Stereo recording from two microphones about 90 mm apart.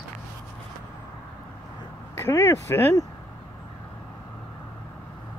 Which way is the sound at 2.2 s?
30° left (ahead or behind).